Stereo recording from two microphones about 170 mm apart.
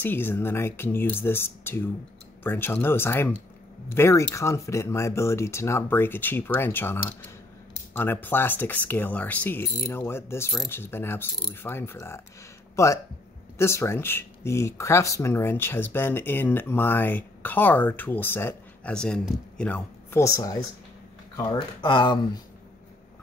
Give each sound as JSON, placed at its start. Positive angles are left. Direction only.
{"t": 0.0, "sound": "speech", "side_deg": 10}